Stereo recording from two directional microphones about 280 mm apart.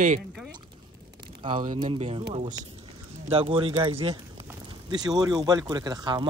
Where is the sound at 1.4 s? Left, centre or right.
Right.